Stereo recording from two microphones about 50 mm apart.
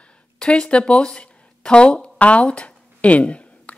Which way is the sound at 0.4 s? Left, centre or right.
Left.